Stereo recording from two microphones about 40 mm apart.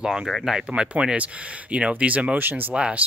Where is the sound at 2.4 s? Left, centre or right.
Right.